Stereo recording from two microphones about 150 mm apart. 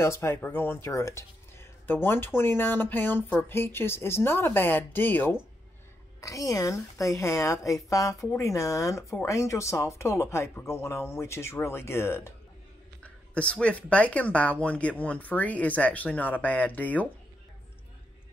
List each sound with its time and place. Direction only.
0.0 s a woman's voice: 20° left (ahead or behind)